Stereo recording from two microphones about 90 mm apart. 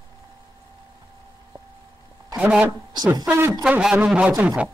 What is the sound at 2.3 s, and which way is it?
A woman's voice, 15° right (ahead or behind).